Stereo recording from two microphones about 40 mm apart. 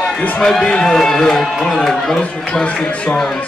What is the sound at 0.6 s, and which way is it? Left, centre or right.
Speech, centre.